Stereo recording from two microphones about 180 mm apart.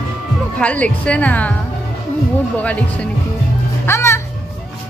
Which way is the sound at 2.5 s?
10° left (ahead or behind).